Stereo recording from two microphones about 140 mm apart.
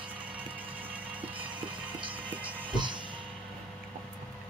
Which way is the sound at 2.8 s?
35° right (ahead or behind).